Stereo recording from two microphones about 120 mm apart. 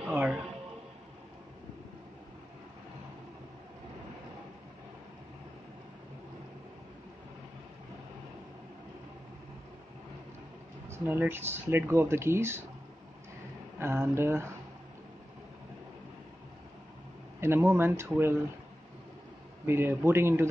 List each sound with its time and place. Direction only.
0.0 s speech: 10° right (ahead or behind)
10.9 s speech: 15° right (ahead or behind)
13.7 s speech: 20° right (ahead or behind)
17.4 s speech: 20° right (ahead or behind)
19.6 s speech: 20° right (ahead or behind)